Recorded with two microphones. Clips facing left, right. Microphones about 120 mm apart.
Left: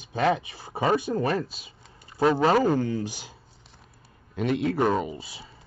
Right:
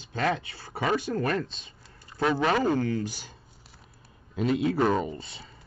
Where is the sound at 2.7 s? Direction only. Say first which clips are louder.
Left 1 dB; 15° left (ahead or behind).